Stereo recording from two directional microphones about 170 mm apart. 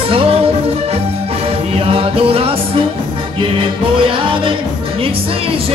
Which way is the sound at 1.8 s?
35° right (ahead or behind).